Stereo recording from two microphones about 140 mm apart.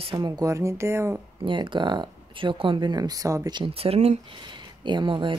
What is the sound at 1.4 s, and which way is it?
Speech, 35° right (ahead or behind).